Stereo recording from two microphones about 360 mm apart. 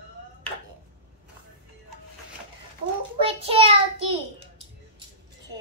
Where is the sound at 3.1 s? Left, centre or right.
Centre.